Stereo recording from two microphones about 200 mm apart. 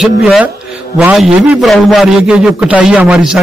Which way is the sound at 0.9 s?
15° right (ahead or behind).